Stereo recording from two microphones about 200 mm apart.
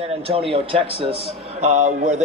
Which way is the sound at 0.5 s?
30° right (ahead or behind).